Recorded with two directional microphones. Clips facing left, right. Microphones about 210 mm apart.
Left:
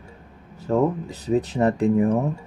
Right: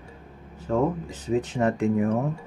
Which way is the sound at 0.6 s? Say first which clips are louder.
Left 3 dB; 40° left (ahead or behind).